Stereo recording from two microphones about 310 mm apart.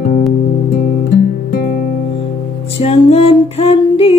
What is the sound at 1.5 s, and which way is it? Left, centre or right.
Music, left.